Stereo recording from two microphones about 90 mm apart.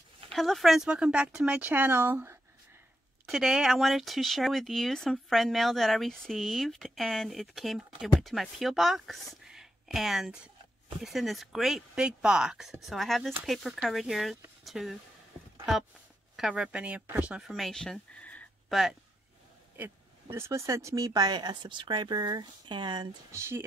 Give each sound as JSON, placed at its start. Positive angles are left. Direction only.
{"t": 0.3, "sound": "speech", "side_deg": 0}
{"t": 3.3, "sound": "speech", "side_deg": -5}
{"t": 16.3, "sound": "speech", "side_deg": -10}
{"t": 17.4, "sound": "speech", "side_deg": 0}
{"t": 18.7, "sound": "speech", "side_deg": -5}
{"t": 19.8, "sound": "speech", "side_deg": -30}
{"t": 23.3, "sound": "speech", "side_deg": -30}